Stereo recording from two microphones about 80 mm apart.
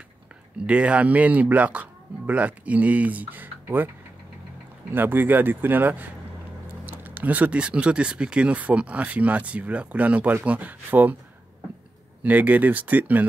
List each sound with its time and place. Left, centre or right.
0.7 s speech: centre
4.9 s speech: right
12.2 s speech: right